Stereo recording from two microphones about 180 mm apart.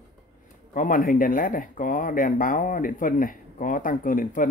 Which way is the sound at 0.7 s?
50° left (ahead or behind).